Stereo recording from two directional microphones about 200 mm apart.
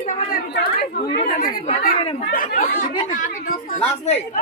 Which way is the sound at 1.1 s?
35° left (ahead or behind).